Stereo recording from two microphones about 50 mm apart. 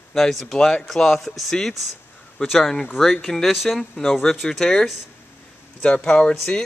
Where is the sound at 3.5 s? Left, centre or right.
Centre.